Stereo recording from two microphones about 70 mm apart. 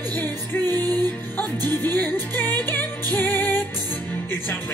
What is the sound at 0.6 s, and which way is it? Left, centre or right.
Music, right.